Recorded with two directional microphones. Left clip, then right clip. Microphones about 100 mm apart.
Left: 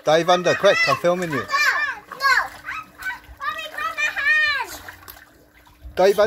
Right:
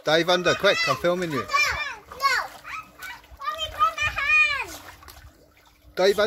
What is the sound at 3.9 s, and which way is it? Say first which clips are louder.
Children playing: left 2 dB; centre (ahead or behind).